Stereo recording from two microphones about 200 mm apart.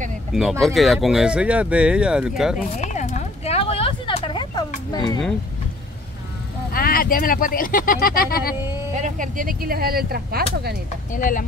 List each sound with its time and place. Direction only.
0.3 s speech: centre (ahead or behind)
2.8 s a sound: 35° left (ahead or behind)
6.7 s speech: 45° left (ahead or behind)
8.9 s speech: 40° right (ahead or behind)
11.1 s speech: 40° left (ahead or behind)